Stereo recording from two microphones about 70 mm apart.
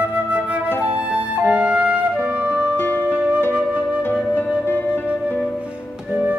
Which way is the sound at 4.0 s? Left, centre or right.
Left.